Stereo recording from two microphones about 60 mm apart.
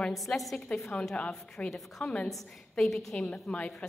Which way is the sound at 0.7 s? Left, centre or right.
Centre.